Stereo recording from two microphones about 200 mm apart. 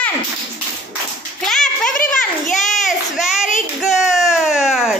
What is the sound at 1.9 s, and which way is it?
Children playing, 40° left (ahead or behind).